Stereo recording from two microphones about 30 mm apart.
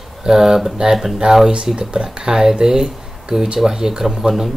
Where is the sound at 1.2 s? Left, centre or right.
Right.